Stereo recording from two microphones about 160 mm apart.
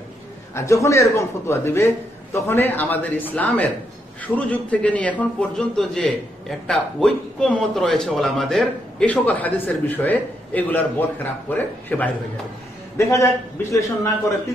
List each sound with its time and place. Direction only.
0.6 s a man's voice: 20° left (ahead or behind)